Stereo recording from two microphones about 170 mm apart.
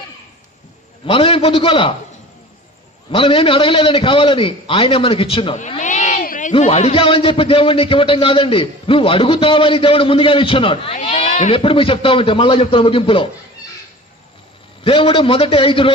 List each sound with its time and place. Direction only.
1.0 s a man's voice: 30° left (ahead or behind)
3.1 s a man's voice: 30° left (ahead or behind)
5.8 s a sound: 45° left (ahead or behind)
6.5 s a man's voice: 35° left (ahead or behind)
11.0 s a man's voice: 45° left (ahead or behind)
14.8 s a man's voice: 30° left (ahead or behind)